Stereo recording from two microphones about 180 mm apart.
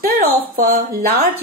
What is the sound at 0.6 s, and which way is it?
Speech, 40° right (ahead or behind).